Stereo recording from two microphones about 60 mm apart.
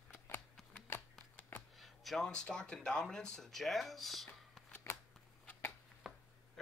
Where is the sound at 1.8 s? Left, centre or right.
Centre.